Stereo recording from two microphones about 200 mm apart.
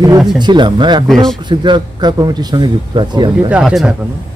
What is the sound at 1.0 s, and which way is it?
Speech, centre (ahead or behind).